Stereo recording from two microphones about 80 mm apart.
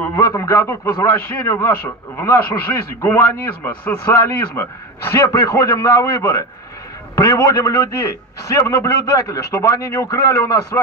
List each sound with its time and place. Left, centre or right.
0.1 s a man's voice: left